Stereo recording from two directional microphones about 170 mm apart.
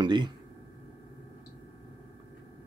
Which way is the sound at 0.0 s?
25° right (ahead or behind).